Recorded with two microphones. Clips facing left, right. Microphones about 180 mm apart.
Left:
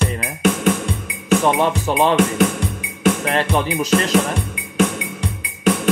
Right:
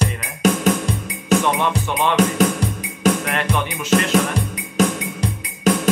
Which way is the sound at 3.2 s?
30° left (ahead or behind).